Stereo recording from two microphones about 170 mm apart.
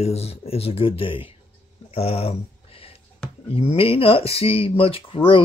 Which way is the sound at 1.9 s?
35° left (ahead or behind).